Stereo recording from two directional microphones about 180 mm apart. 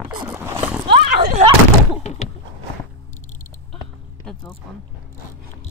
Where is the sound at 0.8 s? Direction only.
40° right (ahead or behind).